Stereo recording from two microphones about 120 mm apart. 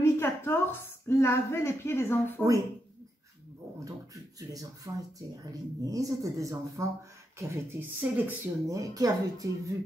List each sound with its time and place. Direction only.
0.0 s a woman's voice: 20° left (ahead or behind)
3.8 s a woman's voice: 30° right (ahead or behind)
8.6 s speech: 30° right (ahead or behind)